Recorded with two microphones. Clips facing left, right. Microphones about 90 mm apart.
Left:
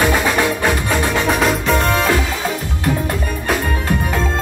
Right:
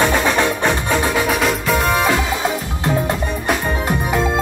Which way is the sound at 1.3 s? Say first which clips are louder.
Left 2 dB; centre (ahead or behind).